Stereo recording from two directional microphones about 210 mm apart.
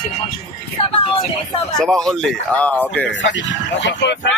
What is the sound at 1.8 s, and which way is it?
Speech, centre (ahead or behind).